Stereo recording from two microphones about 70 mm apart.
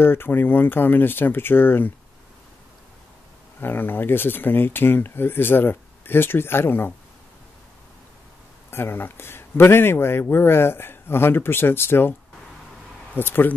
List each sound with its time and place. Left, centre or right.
0.0 s speech: left
3.6 s speech: left
8.6 s speech: left
13.1 s speech: left